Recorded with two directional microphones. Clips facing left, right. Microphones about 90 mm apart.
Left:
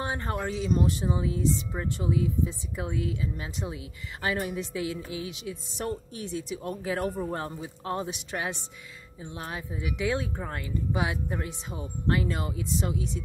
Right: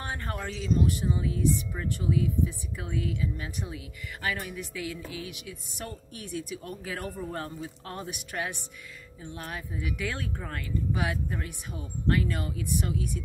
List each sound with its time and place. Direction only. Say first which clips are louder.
0.0 s speech: left 4 dB; 20° left (ahead or behind)